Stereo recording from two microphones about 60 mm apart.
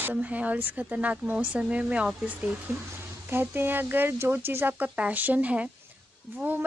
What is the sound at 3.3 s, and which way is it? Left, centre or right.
Speech, right.